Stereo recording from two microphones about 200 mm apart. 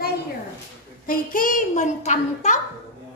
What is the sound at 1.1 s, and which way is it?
A woman's voice, 45° left (ahead or behind).